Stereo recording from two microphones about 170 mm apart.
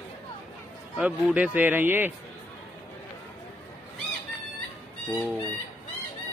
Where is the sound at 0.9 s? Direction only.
5° right (ahead or behind).